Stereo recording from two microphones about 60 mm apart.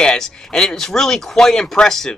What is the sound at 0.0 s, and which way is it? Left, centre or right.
Speech, centre.